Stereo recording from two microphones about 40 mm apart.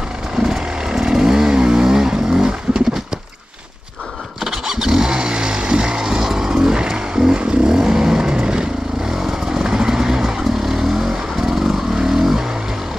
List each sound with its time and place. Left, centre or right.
0.4 s vehicle: centre
4.5 s vehicle: centre